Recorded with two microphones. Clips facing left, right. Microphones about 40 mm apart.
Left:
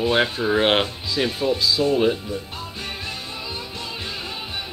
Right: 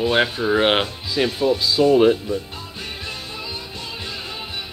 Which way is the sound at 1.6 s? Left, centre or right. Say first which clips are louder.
Right 6 dB; centre.